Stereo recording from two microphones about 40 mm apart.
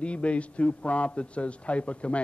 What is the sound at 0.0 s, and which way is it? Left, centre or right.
A man's voice, left.